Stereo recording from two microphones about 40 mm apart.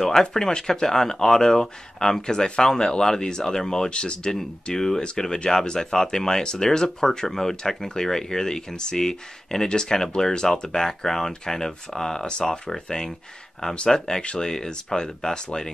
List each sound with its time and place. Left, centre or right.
0.0 s speech: centre
4.7 s speech: centre